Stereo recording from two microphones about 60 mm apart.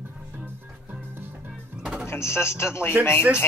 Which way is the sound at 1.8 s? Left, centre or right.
Centre.